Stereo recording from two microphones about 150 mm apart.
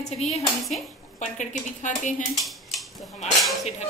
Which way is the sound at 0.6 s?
Centre (ahead or behind).